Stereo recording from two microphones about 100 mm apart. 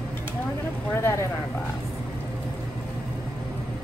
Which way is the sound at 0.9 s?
25° left (ahead or behind).